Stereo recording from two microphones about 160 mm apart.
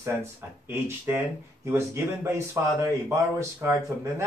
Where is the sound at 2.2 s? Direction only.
20° right (ahead or behind).